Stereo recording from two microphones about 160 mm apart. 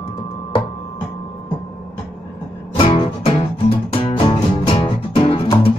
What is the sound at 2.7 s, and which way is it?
Music, 35° left (ahead or behind).